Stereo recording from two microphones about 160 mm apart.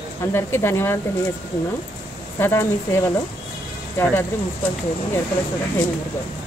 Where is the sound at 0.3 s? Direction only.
15° left (ahead or behind).